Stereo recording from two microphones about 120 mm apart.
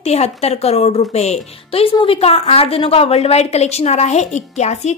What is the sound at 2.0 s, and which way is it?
A woman's voice, 50° left (ahead or behind).